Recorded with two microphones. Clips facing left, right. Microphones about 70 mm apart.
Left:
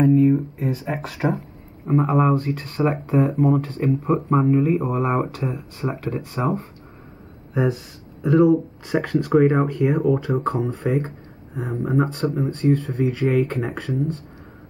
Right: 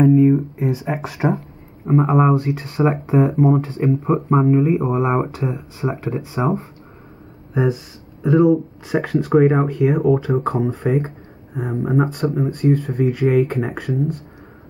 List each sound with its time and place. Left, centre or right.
0.3 s speech: centre